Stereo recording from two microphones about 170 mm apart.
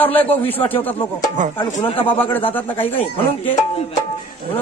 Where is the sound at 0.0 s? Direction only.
10° left (ahead or behind).